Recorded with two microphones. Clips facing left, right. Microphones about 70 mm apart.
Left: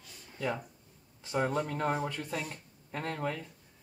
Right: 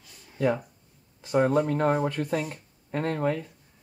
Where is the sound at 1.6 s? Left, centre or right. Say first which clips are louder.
Right 8 dB; right.